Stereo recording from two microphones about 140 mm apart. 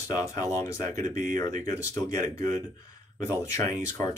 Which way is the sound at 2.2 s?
25° left (ahead or behind).